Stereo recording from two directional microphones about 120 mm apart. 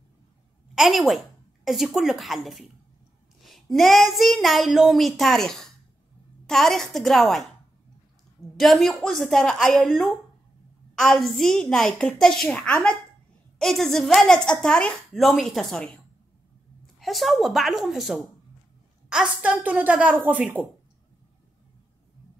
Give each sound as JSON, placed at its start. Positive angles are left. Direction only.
{"t": 0.7, "sound": "a woman's voice", "side_deg": 0}
{"t": 8.5, "sound": "a woman's voice", "side_deg": 0}
{"t": 17.0, "sound": "a woman's voice", "side_deg": 0}